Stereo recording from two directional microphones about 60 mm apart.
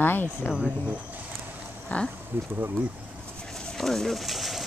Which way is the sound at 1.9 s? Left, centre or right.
Left.